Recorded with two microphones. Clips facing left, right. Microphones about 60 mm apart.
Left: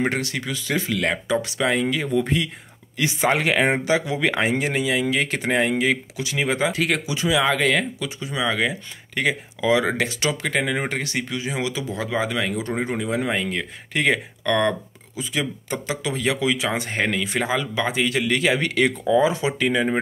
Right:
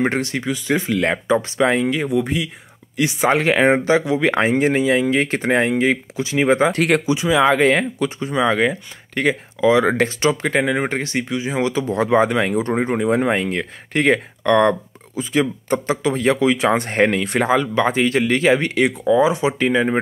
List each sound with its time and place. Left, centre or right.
0.0 s speech: right
2.0 s speech: centre
3.0 s speech: right
6.7 s speech: right
7.2 s speech: right
10.4 s speech: centre
10.9 s speech: right
11.6 s speech: right
16.5 s speech: right
17.4 s speech: right
17.7 s speech: right
18.9 s speech: centre
19.3 s speech: right